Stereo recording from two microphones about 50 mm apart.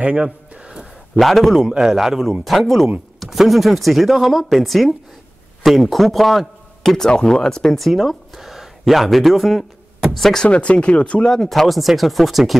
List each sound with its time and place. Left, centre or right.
0.0 s a sound: right
1.2 s a man's voice: centre
10.4 s speech: left
11.2 s speech: centre